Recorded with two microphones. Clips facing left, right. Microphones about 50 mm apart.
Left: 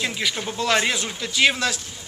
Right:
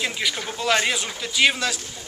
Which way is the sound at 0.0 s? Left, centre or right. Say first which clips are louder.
Even; centre.